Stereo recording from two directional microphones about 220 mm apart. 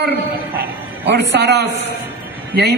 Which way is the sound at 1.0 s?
50° right (ahead or behind).